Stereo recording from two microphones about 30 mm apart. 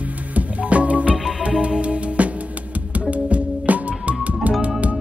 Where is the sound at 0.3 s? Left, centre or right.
Right.